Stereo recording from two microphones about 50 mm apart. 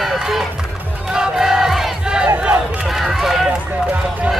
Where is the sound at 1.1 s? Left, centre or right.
Centre.